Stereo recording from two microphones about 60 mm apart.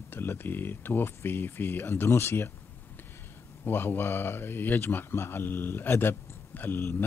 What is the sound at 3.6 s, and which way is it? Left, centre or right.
Speech, left.